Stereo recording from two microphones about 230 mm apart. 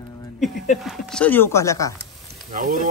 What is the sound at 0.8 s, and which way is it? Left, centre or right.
Speech, centre.